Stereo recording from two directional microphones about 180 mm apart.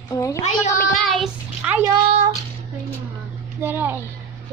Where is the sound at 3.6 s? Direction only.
10° right (ahead or behind).